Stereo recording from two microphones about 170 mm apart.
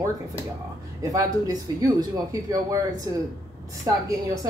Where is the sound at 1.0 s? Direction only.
20° right (ahead or behind).